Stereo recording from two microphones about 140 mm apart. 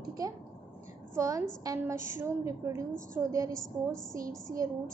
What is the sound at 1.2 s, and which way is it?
A woman's voice, 25° right (ahead or behind).